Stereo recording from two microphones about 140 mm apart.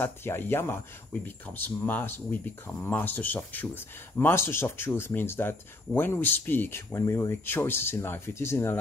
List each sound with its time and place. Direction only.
0.0 s speech: 15° left (ahead or behind)